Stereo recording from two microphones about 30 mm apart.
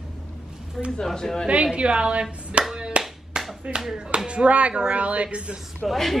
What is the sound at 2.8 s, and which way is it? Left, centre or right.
Clapping, right.